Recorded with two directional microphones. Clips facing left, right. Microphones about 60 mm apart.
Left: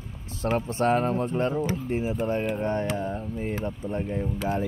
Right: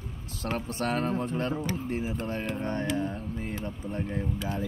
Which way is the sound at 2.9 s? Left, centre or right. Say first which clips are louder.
Left 1 dB; left.